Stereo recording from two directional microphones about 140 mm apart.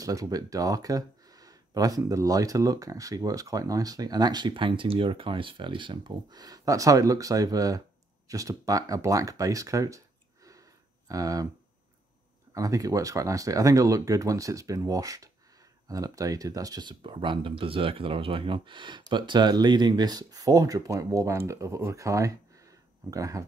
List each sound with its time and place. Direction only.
0.0 s speech: 25° right (ahead or behind)
12.5 s speech: 25° right (ahead or behind)